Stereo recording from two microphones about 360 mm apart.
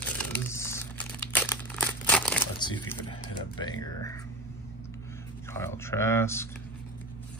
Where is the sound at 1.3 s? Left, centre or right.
Centre.